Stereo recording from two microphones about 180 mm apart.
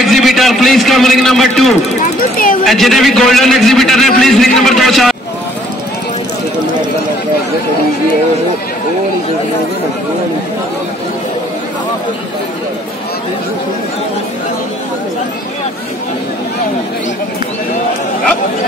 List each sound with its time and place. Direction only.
0.0 s a man's voice: centre (ahead or behind)
2.0 s speech: 50° left (ahead or behind)
2.6 s a man's voice: centre (ahead or behind)